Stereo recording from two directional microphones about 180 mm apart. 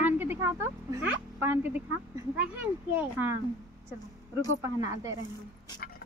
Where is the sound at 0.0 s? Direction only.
10° right (ahead or behind).